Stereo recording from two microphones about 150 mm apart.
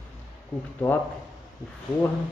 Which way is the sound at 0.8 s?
10° left (ahead or behind).